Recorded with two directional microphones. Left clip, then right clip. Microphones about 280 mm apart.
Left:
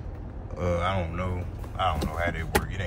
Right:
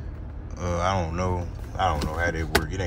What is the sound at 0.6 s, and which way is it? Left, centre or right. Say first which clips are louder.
Speech: right 2 dB; centre.